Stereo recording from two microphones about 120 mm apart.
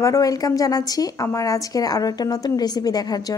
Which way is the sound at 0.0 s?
30° left (ahead or behind).